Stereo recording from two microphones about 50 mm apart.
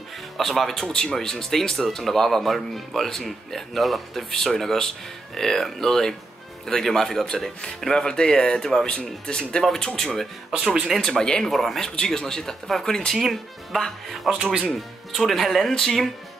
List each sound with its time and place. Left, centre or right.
0.4 s speech: centre
10.5 s speech: right
10.9 s speech: centre
14.3 s speech: centre
14.7 s speech: centre